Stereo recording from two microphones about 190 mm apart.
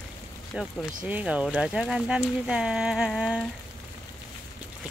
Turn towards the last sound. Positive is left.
turn(degrees=0)  # may be behind; listen again after turning